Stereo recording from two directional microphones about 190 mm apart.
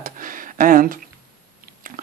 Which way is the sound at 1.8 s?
45° right (ahead or behind).